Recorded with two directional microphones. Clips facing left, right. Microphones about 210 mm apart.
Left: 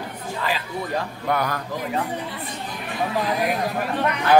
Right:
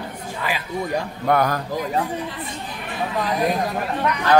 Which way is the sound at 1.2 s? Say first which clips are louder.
Right 6 dB; 45° right (ahead or behind).